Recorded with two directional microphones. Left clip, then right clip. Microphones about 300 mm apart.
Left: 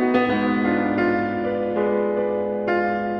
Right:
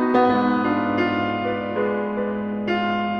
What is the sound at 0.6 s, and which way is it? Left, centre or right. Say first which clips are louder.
Music: even; left.